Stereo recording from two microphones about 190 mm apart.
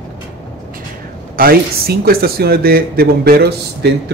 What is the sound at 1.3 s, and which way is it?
Speech, 50° right (ahead or behind).